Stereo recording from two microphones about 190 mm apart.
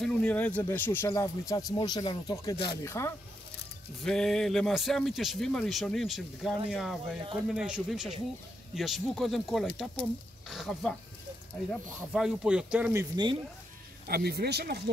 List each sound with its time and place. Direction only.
0.0 s speech: 5° left (ahead or behind)
2.5 s speech: 60° left (ahead or behind)
2.8 s speech: 15° left (ahead or behind)
4.0 s a man's voice: centre (ahead or behind)
12.1 s a man's voice: 5° right (ahead or behind)
13.1 s speech: 25° right (ahead or behind)
14.0 s speech: 55° right (ahead or behind)